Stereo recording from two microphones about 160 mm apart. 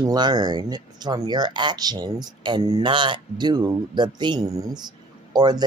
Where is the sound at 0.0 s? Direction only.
25° right (ahead or behind).